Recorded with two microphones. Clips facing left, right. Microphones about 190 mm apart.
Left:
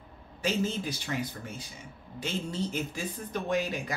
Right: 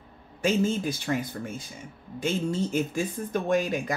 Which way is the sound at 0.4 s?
50° right (ahead or behind).